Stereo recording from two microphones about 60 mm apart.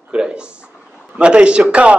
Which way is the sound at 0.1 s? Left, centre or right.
Centre.